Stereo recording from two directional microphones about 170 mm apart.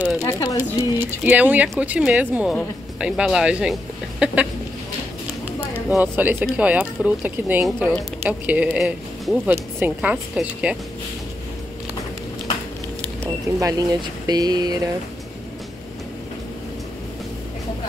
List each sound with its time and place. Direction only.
0.2 s speech: 20° left (ahead or behind)
0.9 s speech: 10° right (ahead or behind)
5.7 s speech: 10° right (ahead or behind)
13.2 s speech: 20° right (ahead or behind)